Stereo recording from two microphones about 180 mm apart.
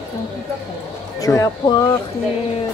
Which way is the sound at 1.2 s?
20° left (ahead or behind).